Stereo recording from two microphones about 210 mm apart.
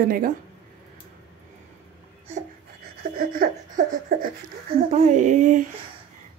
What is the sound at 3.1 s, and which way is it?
Laughter, 45° right (ahead or behind).